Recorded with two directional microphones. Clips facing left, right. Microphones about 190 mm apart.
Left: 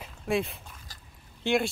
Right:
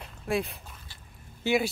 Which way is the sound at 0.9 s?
40° left (ahead or behind).